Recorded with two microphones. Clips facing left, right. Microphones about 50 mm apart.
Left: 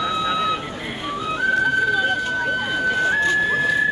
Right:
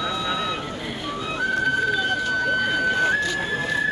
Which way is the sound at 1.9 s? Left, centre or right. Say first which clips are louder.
Left 2 dB; centre.